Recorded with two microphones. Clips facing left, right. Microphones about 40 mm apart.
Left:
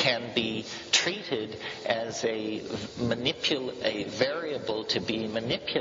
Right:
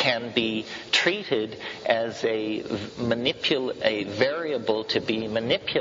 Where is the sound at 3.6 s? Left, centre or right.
Right.